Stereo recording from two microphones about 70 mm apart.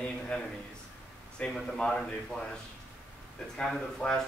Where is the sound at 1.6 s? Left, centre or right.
Centre.